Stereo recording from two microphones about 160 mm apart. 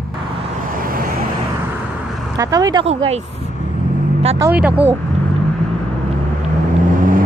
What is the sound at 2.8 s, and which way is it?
Speech, 40° right (ahead or behind).